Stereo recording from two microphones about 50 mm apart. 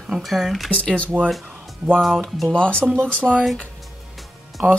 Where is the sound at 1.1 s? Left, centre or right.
Right.